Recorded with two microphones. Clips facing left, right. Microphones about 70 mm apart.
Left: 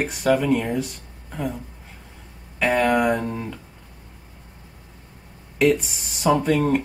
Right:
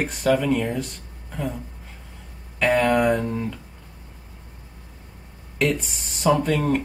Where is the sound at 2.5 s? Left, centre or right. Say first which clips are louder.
Even; centre.